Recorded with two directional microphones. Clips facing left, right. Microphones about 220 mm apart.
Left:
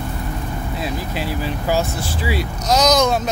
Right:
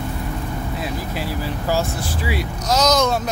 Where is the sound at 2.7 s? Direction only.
15° left (ahead or behind).